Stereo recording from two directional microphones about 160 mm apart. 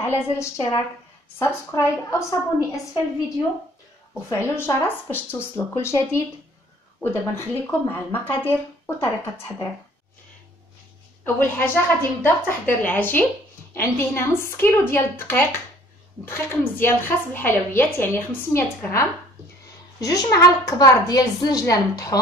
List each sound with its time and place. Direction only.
0.2 s a woman's voice: 15° left (ahead or behind)
4.3 s a woman's voice: 15° left (ahead or behind)
11.3 s a woman's voice: 15° left (ahead or behind)